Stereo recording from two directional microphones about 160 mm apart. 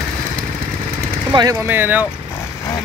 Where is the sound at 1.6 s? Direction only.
10° right (ahead or behind).